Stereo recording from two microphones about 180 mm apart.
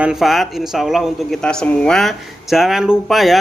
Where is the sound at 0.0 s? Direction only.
Centre (ahead or behind).